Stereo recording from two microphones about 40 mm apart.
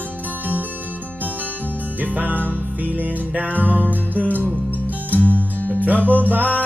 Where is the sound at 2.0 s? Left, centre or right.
Right.